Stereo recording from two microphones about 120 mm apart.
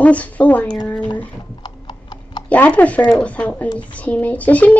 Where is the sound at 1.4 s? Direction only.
40° left (ahead or behind).